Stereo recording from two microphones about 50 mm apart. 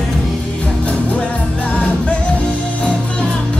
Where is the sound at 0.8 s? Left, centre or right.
Left.